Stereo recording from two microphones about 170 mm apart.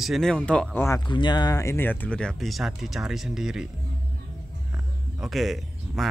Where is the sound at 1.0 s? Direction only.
25° left (ahead or behind); by 3.7 s 5° right (ahead or behind).